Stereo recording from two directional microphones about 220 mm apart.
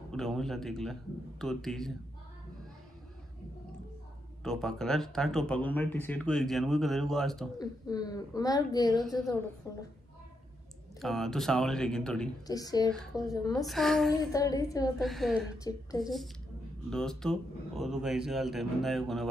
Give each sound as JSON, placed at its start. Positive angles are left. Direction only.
{"t": 0.1, "sound": "speech", "side_deg": 0}
{"t": 4.4, "sound": "speech", "side_deg": 0}
{"t": 7.5, "sound": "a woman's voice", "side_deg": 15}
{"t": 11.0, "sound": "speech", "side_deg": 0}
{"t": 12.4, "sound": "a woman's voice", "side_deg": 15}
{"t": 13.7, "sound": "speech", "side_deg": 0}
{"t": 14.1, "sound": "a woman's voice", "side_deg": 15}
{"t": 15.0, "sound": "speech", "side_deg": 0}
{"t": 16.0, "sound": "a woman's voice", "side_deg": 15}
{"t": 16.9, "sound": "speech", "side_deg": 0}